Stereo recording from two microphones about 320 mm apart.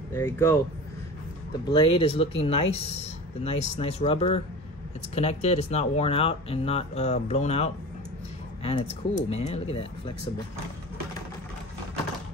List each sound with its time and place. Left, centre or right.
0.1 s speech: centre
1.7 s speech: centre
9.1 s speech: centre